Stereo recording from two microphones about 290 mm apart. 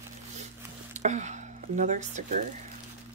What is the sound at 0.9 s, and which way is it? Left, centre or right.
Speech, right.